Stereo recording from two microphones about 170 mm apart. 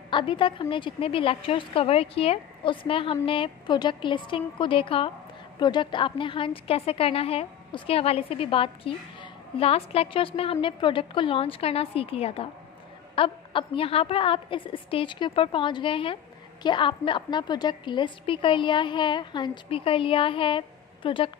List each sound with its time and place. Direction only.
0.1 s a woman's voice: 30° left (ahead or behind)